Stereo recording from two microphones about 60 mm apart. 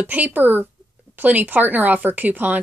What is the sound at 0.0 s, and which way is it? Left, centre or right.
A woman's voice, right.